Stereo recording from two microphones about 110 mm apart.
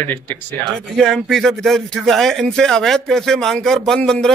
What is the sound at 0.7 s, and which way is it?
Speech, 5° left (ahead or behind).